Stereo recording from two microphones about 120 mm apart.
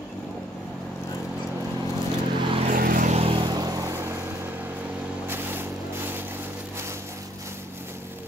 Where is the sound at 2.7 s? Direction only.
90° right.